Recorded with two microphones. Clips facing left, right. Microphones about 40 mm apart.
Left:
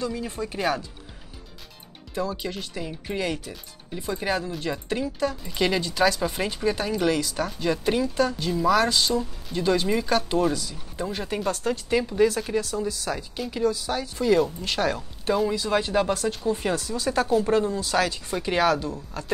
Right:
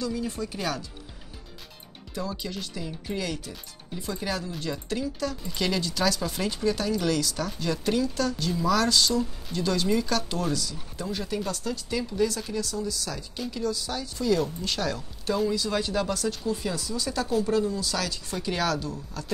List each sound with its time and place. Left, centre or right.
0.0 s speech: left
2.1 s speech: left